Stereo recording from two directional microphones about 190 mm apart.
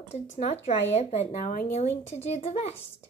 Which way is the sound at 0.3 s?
35° left (ahead or behind).